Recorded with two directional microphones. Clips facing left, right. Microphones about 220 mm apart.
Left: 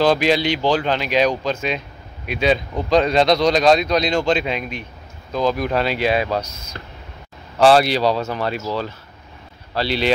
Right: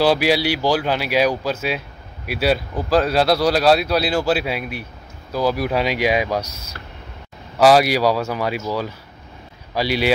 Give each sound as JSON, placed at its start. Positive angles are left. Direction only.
{"t": 0.0, "sound": "speech", "side_deg": -10}
{"t": 6.7, "sound": "a sound", "side_deg": 20}
{"t": 7.5, "sound": "speech", "side_deg": -10}